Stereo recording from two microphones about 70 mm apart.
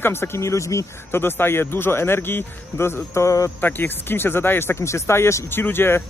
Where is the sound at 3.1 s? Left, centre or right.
Left.